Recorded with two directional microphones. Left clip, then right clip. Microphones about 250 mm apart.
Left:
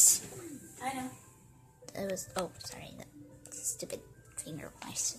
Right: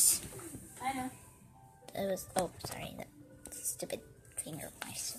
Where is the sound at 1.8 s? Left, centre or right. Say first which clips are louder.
Right 1 dB; centre.